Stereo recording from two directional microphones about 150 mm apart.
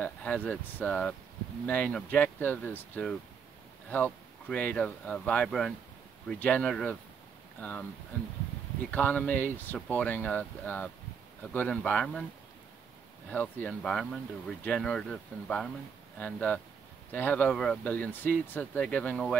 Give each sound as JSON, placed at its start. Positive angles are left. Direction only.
{"t": 0.0, "sound": "speech", "side_deg": 10}
{"t": 8.9, "sound": "speech", "side_deg": 10}
{"t": 13.3, "sound": "speech", "side_deg": 10}